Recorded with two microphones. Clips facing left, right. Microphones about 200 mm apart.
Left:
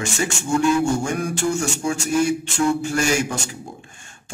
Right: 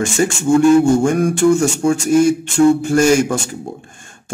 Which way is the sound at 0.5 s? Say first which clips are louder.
Right 8 dB; 30° right (ahead or behind).